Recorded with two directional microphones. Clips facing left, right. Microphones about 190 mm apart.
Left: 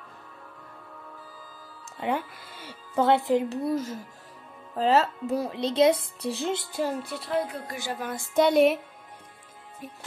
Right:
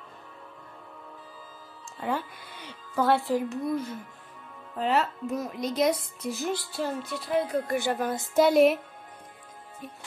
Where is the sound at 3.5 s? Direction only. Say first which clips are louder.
Left 2 dB; 35° left (ahead or behind).